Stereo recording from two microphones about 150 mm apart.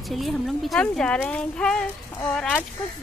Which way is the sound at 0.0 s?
Centre (ahead or behind).